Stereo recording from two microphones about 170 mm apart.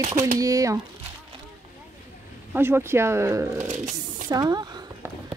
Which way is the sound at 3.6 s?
45° right (ahead or behind).